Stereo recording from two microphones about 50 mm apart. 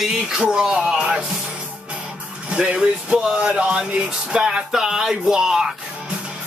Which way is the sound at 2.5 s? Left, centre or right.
Centre.